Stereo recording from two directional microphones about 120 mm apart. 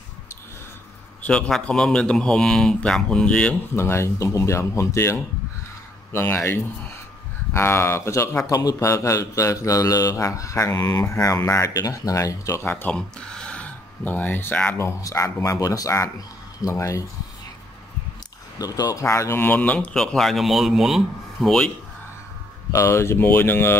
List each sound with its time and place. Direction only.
1.2 s speech: 10° left (ahead or behind)
3.7 s a man's voice: 20° left (ahead or behind)
18.6 s speech: 30° left (ahead or behind); by 21.7 s 5° left (ahead or behind)
22.7 s a man's voice: 25° left (ahead or behind)